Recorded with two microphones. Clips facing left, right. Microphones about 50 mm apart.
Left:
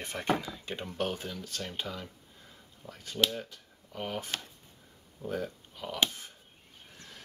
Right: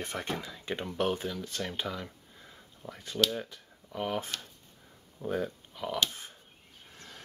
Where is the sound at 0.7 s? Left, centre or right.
Right.